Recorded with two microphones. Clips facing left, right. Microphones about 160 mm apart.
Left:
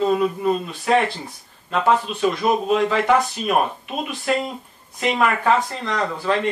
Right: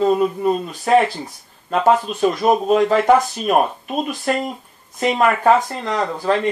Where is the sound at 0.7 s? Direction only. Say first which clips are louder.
Right 4 dB; 40° right (ahead or behind).